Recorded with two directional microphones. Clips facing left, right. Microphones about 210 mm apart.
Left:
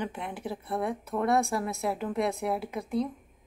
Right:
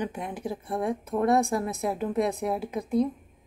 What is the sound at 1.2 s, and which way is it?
A woman's voice, 15° right (ahead or behind).